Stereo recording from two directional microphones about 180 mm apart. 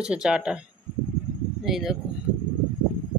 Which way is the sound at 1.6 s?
Centre (ahead or behind).